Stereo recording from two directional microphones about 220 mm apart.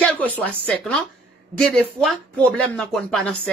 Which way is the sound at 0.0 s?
5° left (ahead or behind).